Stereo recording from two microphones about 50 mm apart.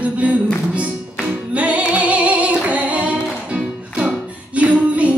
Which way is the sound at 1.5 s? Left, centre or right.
Right.